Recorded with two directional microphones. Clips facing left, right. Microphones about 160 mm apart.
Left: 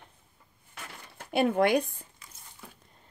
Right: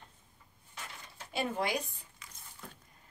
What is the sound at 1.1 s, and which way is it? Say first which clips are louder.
Speech: left 10 dB; 55° left (ahead or behind).